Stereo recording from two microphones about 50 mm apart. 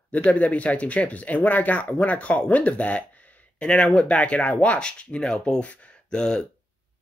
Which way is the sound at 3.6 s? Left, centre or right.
Centre.